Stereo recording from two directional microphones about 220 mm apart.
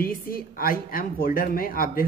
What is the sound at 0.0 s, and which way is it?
Speech, 40° left (ahead or behind).